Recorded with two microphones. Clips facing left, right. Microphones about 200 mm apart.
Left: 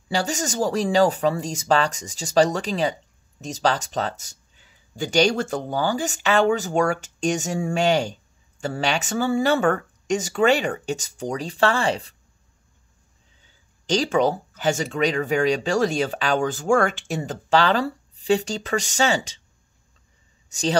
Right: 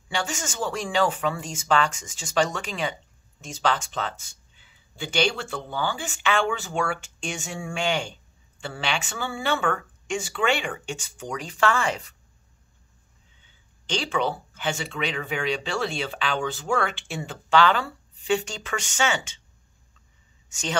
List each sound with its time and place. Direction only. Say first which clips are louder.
0.1 s speech: left 6 dB; 35° left (ahead or behind)
13.4 s speech: left 1 dB; 40° left (ahead or behind)
20.4 s speech: left 8 dB; 35° left (ahead or behind)